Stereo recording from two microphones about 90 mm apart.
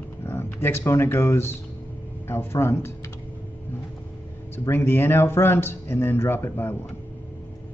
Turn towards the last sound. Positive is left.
turn(degrees=25)  # may be behind; listen again after turning